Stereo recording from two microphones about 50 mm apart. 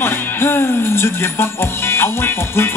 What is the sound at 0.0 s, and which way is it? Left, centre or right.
Music, left.